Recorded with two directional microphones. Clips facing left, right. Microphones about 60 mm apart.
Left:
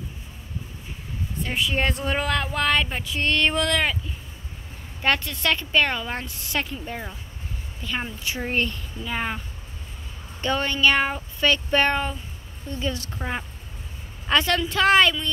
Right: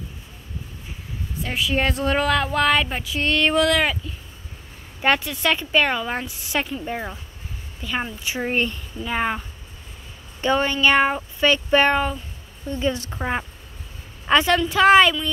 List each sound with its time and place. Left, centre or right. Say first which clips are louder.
1.4 s speech: right 2 dB; centre
5.0 s speech: right 3 dB; centre
7.8 s speech: right 3 dB; centre
10.4 s speech: right 3 dB; centre
12.8 s speech: right 5 dB; right
14.3 s speech: right 4 dB; centre